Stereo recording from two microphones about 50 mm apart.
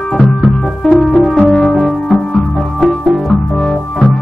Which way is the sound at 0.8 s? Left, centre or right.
Centre.